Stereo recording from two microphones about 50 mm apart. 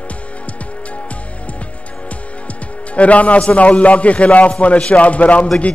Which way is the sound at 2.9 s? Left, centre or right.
Left.